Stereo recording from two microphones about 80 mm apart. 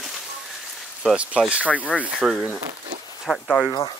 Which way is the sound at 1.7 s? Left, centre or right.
Centre.